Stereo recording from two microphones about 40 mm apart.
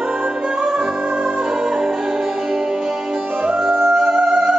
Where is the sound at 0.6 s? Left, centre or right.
Centre.